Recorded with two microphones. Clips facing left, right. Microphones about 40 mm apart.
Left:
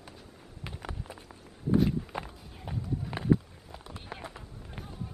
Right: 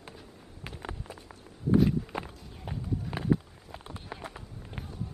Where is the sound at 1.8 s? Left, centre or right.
Centre.